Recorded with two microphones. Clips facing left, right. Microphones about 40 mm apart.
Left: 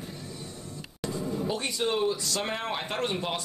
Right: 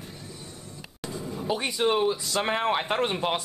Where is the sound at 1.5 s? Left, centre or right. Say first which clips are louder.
Right 6 dB; centre.